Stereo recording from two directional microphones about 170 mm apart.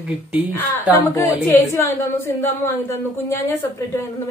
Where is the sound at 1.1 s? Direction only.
10° left (ahead or behind).